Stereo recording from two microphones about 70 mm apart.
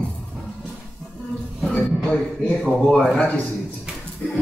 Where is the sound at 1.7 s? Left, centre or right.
Centre.